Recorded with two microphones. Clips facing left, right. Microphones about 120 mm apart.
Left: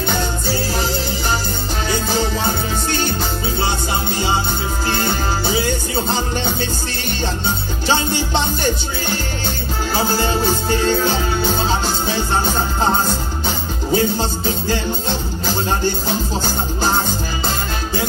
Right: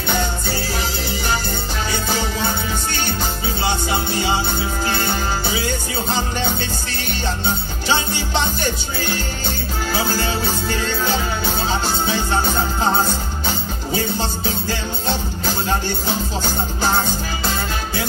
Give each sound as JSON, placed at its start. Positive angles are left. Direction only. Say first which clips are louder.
{"t": 9.9, "sound": "music", "louder": "left 4 dB", "side_deg": 45}
{"t": 13.5, "sound": "music", "louder": "left 4 dB", "side_deg": 45}